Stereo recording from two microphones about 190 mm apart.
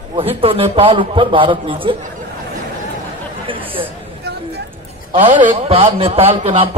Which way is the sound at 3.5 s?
25° right (ahead or behind).